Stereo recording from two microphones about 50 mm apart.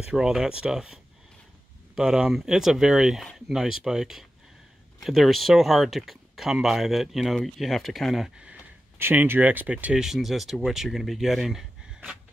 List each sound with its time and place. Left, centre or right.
0.0 s speech: centre
2.0 s speech: centre
9.1 s speech: right
9.9 s speech: centre